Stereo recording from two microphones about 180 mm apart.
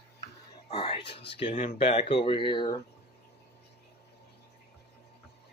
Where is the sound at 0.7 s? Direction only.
30° left (ahead or behind).